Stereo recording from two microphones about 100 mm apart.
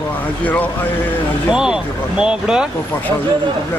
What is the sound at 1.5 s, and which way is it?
Speech, 10° right (ahead or behind).